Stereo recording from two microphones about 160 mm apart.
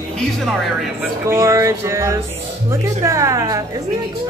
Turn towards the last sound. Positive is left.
turn(degrees=-20)  # may be behind; listen again after turning